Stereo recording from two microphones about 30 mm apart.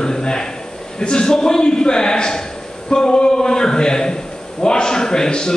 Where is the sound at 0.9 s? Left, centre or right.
Left.